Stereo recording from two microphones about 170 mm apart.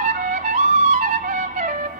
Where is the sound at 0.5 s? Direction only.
40° right (ahead or behind).